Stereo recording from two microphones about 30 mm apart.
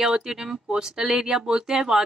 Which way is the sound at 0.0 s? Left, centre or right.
Centre.